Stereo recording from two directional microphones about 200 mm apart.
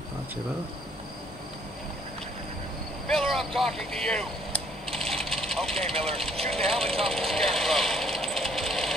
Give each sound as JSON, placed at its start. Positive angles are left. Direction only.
{"t": 3.1, "sound": "vehicle", "side_deg": 0}
{"t": 5.9, "sound": "speech", "side_deg": -30}
{"t": 6.4, "sound": "speech", "side_deg": 0}
{"t": 7.1, "sound": "jackhammer", "side_deg": 0}